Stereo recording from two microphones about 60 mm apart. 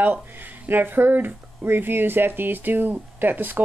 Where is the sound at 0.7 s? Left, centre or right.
Right.